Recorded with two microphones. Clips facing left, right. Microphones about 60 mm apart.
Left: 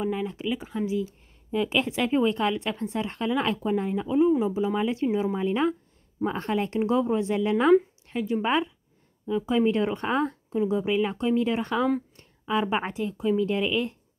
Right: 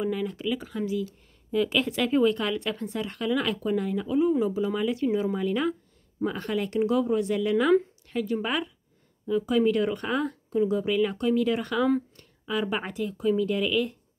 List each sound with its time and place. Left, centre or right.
0.0 s a woman's voice: left